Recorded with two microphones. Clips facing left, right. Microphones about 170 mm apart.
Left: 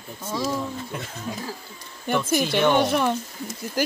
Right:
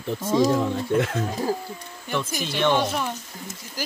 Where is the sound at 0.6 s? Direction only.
90° right.